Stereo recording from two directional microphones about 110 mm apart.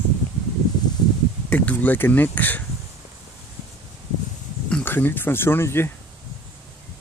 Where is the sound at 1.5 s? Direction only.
15° left (ahead or behind).